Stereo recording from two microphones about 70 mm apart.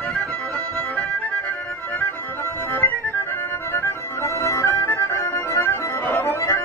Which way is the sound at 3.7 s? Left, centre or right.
Left.